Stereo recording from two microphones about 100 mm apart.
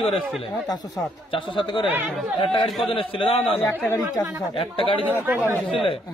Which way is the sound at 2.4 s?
60° left (ahead or behind).